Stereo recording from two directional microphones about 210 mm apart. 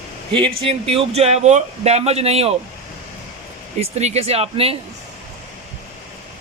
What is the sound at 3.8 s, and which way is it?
Speech, 30° right (ahead or behind).